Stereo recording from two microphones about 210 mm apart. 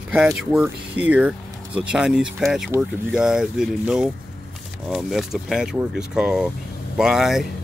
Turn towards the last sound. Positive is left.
turn(degrees=0)  # may be behind; listen again after turning